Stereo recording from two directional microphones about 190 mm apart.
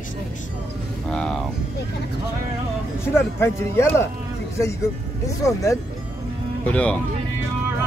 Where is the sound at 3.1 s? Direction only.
15° left (ahead or behind).